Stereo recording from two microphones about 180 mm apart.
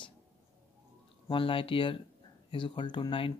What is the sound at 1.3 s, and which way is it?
Speech, 30° left (ahead or behind).